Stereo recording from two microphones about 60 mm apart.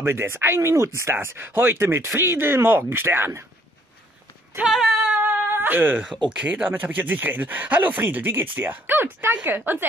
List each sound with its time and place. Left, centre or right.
0.0 s speech: right
1.1 s speech: right
4.6 s speech: right
5.0 s a sound: right
5.5 s speech: right